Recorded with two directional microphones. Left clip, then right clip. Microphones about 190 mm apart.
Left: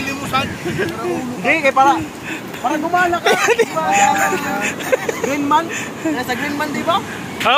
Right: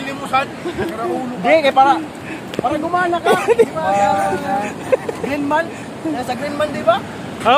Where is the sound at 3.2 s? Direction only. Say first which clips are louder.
Right 1 dB; centre (ahead or behind).